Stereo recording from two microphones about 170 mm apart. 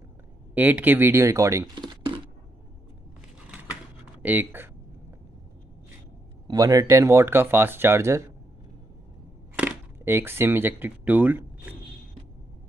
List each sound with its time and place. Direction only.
0.6 s speech: 10° right (ahead or behind)
4.2 s speech: 10° right (ahead or behind)
6.4 s speech: 20° right (ahead or behind)
9.6 s speech: 10° right (ahead or behind)